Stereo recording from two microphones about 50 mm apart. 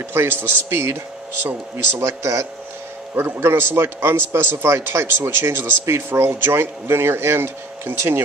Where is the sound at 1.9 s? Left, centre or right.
Right.